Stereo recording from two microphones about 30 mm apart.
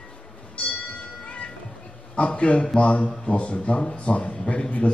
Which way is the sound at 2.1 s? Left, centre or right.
Left.